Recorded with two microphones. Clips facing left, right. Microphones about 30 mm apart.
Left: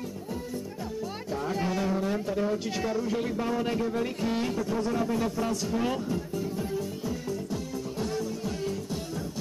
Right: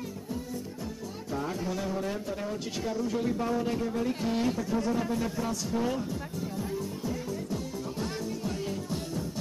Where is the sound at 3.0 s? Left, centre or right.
Centre.